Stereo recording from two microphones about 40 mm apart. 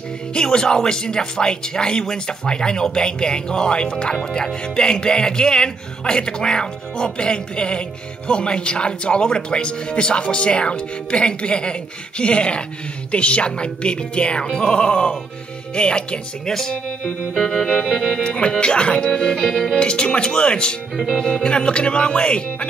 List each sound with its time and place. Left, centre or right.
0.3 s speech: left
17.6 s music: centre
18.2 s speech: left
19.3 s music: centre
19.8 s speech: left
20.9 s music: centre
21.2 s speech: centre